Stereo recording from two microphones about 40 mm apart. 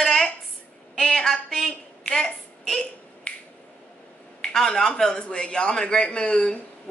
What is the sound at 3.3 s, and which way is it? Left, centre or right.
Finger snapping, left.